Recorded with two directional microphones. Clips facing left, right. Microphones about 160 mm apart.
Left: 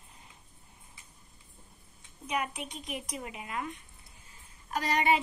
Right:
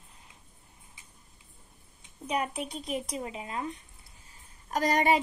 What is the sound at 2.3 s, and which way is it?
A woman's voice, 35° right (ahead or behind).